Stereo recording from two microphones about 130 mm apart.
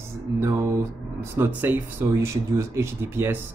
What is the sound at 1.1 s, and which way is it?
Speech, 15° right (ahead or behind).